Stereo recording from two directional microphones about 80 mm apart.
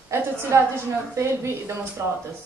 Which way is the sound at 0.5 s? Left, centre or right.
Right.